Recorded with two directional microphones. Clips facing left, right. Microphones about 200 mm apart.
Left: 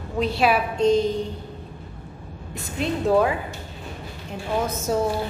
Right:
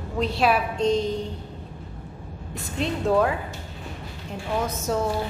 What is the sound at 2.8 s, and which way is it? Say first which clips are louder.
Speech: left 1 dB; 5° left (ahead or behind).